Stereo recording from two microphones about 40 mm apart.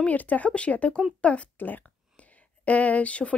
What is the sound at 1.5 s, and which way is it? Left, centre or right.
A woman's voice, left.